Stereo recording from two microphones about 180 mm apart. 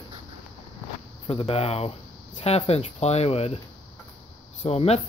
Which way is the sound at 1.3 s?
30° left (ahead or behind).